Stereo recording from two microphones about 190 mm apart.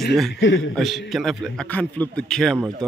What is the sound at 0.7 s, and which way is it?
Speech, centre (ahead or behind).